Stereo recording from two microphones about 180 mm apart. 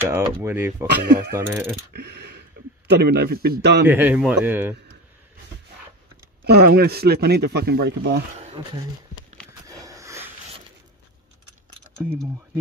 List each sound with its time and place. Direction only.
0.0 s speech: 10° right (ahead or behind)
0.8 s speech: 65° right (ahead or behind)
1.3 s speech: 15° right (ahead or behind)
2.0 s a sound: 65° right (ahead or behind)
2.9 s speech: 65° right (ahead or behind)
3.8 s speech: 10° right (ahead or behind)
6.4 s speech: 60° right (ahead or behind)
9.7 s a sound: 20° right (ahead or behind)